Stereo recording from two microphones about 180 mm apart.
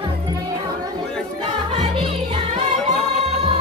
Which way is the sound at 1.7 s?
30° right (ahead or behind).